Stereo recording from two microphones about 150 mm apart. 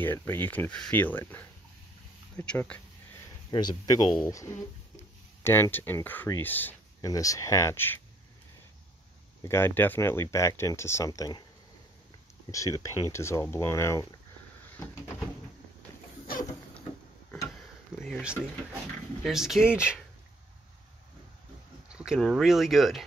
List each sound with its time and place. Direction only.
0.0 s speech: 15° left (ahead or behind)
3.5 s speech: 25° left (ahead or behind)
7.0 s speech: 25° left (ahead or behind)
9.4 s speech: 15° left (ahead or behind)
12.4 s speech: 20° left (ahead or behind)
17.9 s a sound: 5° left (ahead or behind)
19.2 s speech: centre (ahead or behind)
21.8 s speech: 5° right (ahead or behind)